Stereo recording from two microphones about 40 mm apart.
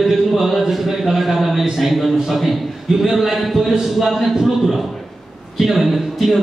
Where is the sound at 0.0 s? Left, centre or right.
Centre.